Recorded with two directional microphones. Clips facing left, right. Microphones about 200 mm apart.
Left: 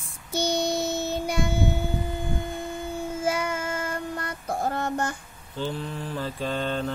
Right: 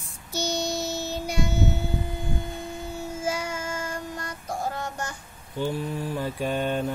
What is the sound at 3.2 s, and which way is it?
Child singing, 55° left (ahead or behind).